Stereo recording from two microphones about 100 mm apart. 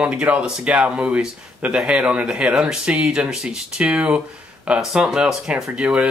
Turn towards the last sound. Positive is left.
turn(degrees=-10)  # may be behind; listen again after turning